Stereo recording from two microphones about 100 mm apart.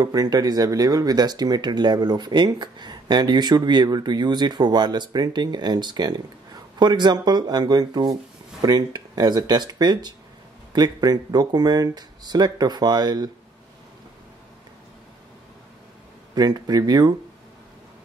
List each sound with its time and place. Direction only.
0.0 s speech: 40° right (ahead or behind)
16.3 s speech: 40° right (ahead or behind)